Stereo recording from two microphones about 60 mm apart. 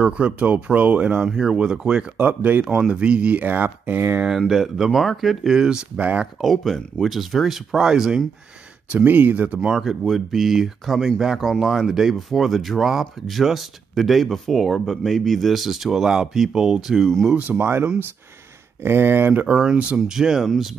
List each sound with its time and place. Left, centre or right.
0.0 s speech: centre
1.2 s speech: centre
2.1 s speech: right
2.6 s speech: centre
2.9 s speech: centre
4.5 s speech: centre
6.4 s speech: centre
8.9 s speech: right
9.7 s speech: centre
17.0 s speech: centre
17.4 s speech: right
19.4 s speech: centre